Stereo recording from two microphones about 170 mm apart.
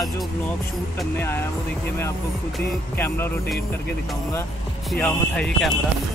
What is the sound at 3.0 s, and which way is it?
Music, 15° left (ahead or behind).